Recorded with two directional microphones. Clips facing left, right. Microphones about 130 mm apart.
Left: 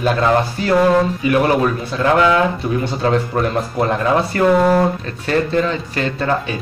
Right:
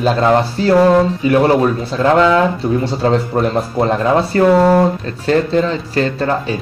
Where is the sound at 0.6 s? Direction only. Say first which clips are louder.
Right 4 dB; 30° right (ahead or behind).